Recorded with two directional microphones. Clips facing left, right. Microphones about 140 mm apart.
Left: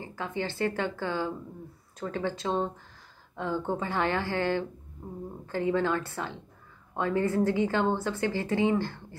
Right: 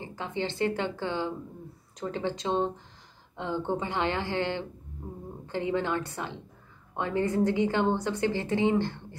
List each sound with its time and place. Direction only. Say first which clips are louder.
0.0 s a woman's voice: even; 20° right (ahead or behind)